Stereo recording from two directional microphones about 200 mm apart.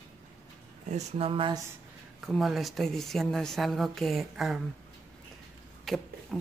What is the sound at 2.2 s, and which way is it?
A woman's voice, centre (ahead or behind).